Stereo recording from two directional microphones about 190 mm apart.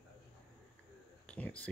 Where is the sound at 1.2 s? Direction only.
5° left (ahead or behind).